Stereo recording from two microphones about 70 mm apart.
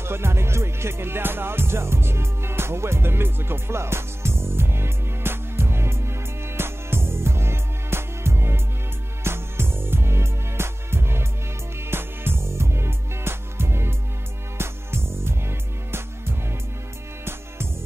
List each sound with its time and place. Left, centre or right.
0.0 s music: right